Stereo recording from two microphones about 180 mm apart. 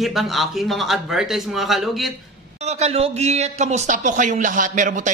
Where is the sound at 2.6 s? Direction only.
35° right (ahead or behind).